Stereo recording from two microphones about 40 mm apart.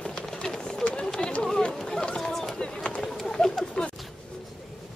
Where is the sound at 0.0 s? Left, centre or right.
Left.